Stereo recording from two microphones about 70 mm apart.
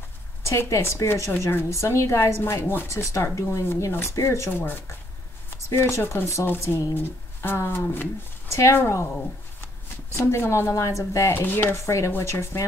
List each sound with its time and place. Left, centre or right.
0.5 s speech: left
1.4 s speech: left
1.7 s speech: left
2.9 s speech: left
7.0 s speech: left
10.1 s speech: left